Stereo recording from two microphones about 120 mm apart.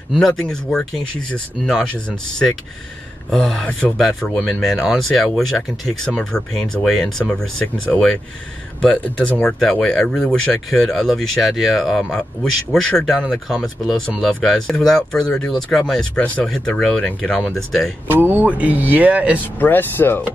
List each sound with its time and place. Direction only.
0.1 s speech: 5° left (ahead or behind)
18.0 s speech: 15° right (ahead or behind)
19.6 s speech: 15° left (ahead or behind)